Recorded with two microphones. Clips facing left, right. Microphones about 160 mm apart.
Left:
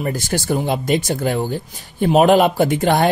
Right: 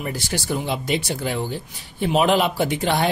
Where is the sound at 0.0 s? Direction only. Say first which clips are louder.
Left 5 dB; 45° left (ahead or behind).